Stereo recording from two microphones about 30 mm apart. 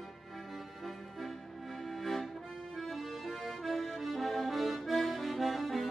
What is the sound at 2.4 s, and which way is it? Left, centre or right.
Accordion, centre.